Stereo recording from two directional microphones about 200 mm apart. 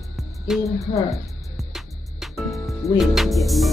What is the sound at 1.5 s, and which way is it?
Music, centre (ahead or behind).